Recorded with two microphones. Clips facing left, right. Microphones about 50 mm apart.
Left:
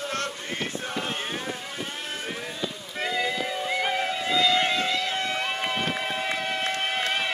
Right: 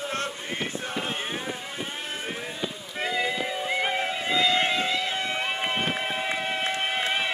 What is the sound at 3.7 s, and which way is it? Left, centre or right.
Vehicle, centre.